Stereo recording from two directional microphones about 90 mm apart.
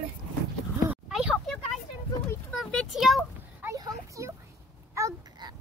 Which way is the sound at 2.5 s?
10° left (ahead or behind).